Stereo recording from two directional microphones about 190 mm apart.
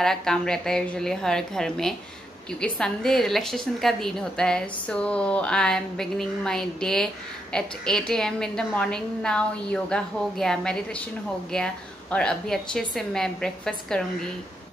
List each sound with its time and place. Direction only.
0.0 s a woman's voice: 5° left (ahead or behind)